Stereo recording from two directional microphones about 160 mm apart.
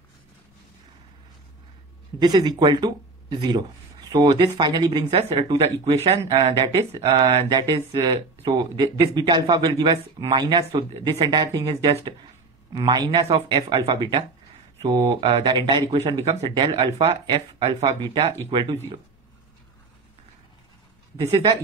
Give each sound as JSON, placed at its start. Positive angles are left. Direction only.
{"t": 2.1, "sound": "speech", "side_deg": -25}
{"t": 14.9, "sound": "speech", "side_deg": -20}
{"t": 15.1, "sound": "speech", "side_deg": -30}
{"t": 17.8, "sound": "speech", "side_deg": -30}